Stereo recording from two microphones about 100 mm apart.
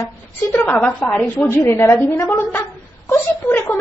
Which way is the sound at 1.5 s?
25° left (ahead or behind).